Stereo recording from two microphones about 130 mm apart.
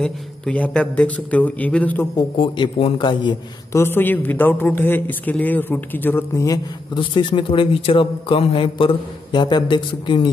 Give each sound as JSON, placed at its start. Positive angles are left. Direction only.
{"t": 0.0, "sound": "a woman's voice", "side_deg": 10}
{"t": 2.1, "sound": "a man's voice", "side_deg": 35}
{"t": 3.7, "sound": "a woman's voice", "side_deg": 15}
{"t": 7.0, "sound": "a man's voice", "side_deg": 40}